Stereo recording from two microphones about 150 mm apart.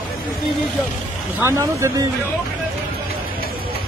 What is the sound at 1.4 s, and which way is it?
Speech, 15° right (ahead or behind).